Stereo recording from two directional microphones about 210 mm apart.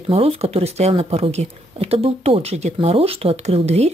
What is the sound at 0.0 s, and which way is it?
A woman's voice, 30° right (ahead or behind).